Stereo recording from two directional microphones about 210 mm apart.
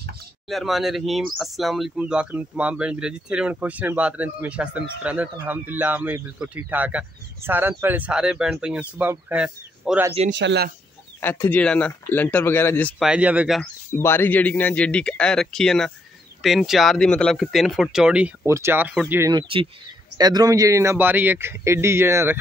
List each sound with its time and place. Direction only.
0.5 s speech: centre (ahead or behind)
10.3 s speech: 55° right (ahead or behind)
11.1 s speech: 10° left (ahead or behind)
13.0 s speech: 5° right (ahead or behind)
13.9 s speech: 10° left (ahead or behind); by 22.4 s 10° right (ahead or behind)